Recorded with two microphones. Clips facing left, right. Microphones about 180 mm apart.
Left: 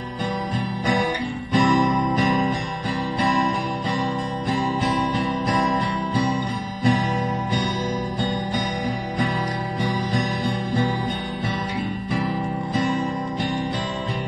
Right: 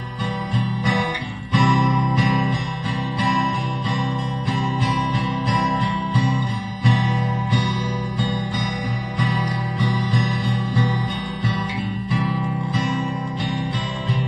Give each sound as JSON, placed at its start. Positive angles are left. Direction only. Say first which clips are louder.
{"t": 1.5, "sound": "music", "louder": "left 1 dB", "side_deg": 40}
{"t": 6.8, "sound": "music", "louder": "left 2 dB", "side_deg": 45}
{"t": 9.8, "sound": "music", "louder": "right 1 dB", "side_deg": 50}